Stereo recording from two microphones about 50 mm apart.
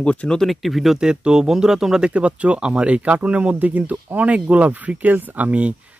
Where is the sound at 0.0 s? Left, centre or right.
Left.